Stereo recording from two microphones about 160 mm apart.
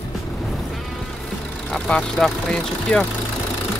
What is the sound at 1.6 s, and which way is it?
Speech, 5° left (ahead or behind).